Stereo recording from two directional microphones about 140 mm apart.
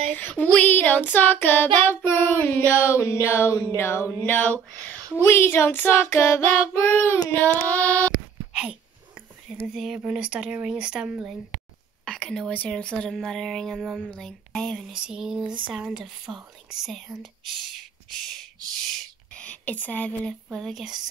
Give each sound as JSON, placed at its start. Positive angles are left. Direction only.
{"t": 0.1, "sound": "child singing", "side_deg": 15}
{"t": 3.7, "sound": "a sound", "side_deg": 20}
{"t": 4.3, "sound": "child singing", "side_deg": 10}
{"t": 9.8, "sound": "speech", "side_deg": -5}
{"t": 12.0, "sound": "speech", "side_deg": 5}
{"t": 18.9, "sound": "a sound", "side_deg": 10}
{"t": 20.5, "sound": "speech", "side_deg": 0}